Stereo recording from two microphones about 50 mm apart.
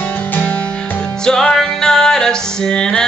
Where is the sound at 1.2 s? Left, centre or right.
Centre.